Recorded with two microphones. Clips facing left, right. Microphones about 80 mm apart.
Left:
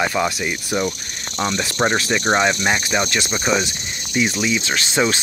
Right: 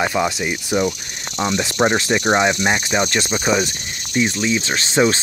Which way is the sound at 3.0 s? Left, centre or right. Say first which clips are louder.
Right 2 dB; right.